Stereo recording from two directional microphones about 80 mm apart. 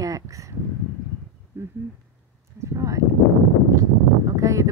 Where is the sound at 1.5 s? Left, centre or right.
Right.